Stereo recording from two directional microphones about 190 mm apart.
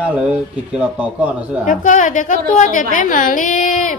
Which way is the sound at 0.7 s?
5° right (ahead or behind).